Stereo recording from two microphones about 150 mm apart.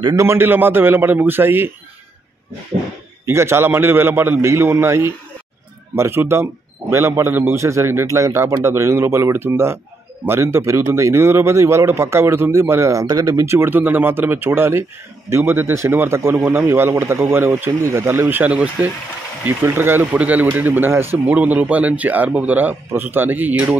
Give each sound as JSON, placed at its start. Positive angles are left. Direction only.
{"t": 0.1, "sound": "speech", "side_deg": -15}
{"t": 3.3, "sound": "a man's voice", "side_deg": -15}